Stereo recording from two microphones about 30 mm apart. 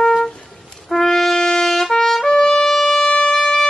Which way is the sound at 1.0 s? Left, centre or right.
Centre.